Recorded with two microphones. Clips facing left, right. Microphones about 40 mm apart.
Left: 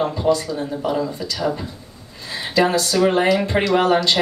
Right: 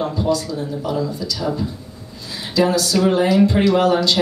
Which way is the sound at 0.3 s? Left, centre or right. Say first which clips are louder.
Left 1 dB; left.